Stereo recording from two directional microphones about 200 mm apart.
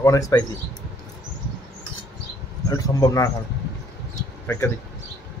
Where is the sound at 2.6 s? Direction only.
20° left (ahead or behind).